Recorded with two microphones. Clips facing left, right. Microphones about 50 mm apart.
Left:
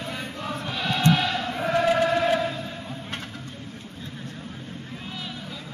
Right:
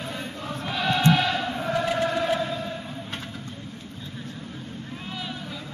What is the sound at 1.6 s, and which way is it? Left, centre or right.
Choir, left.